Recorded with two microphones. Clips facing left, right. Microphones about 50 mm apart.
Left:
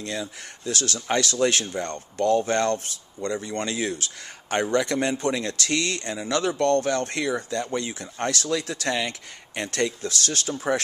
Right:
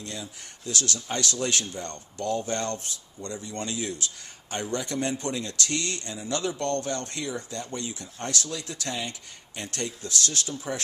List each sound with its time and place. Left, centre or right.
0.0 s speech: left
0.7 s speech: left
1.0 s speech: left
1.6 s speech: left